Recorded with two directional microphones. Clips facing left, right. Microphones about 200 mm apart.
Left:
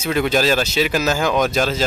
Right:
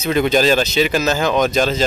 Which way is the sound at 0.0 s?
5° left (ahead or behind).